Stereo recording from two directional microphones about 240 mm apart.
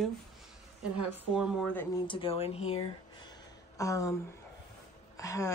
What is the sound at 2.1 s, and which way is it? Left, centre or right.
Speech, left.